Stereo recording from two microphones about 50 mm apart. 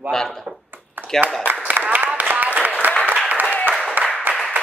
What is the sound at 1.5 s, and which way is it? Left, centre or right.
Applause, right.